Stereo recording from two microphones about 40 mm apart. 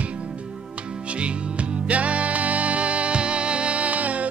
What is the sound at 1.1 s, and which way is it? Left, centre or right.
Music, right.